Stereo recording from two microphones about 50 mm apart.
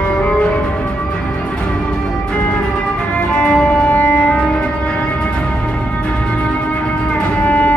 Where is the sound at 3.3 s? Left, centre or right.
Centre.